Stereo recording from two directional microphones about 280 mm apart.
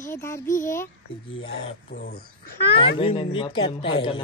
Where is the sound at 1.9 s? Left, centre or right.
Left.